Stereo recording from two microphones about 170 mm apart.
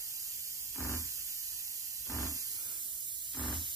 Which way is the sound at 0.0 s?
20° right (ahead or behind).